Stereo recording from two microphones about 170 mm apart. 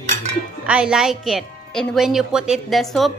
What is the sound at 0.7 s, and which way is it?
A woman's voice, 5° right (ahead or behind).